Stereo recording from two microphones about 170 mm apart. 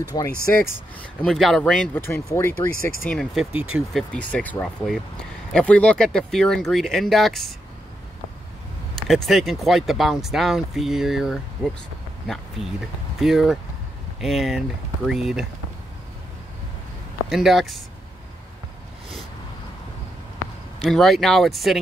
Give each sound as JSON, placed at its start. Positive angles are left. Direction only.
{"t": 0.1, "sound": "speech", "side_deg": 30}
{"t": 1.2, "sound": "speech", "side_deg": 0}
{"t": 3.1, "sound": "speech", "side_deg": 0}
{"t": 4.1, "sound": "speech", "side_deg": 10}
{"t": 8.9, "sound": "speech", "side_deg": 0}
{"t": 12.6, "sound": "speech", "side_deg": 0}
{"t": 17.3, "sound": "speech", "side_deg": 0}
{"t": 20.8, "sound": "speech", "side_deg": 0}